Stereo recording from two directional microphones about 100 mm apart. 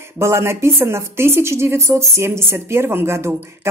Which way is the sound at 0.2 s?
25° right (ahead or behind).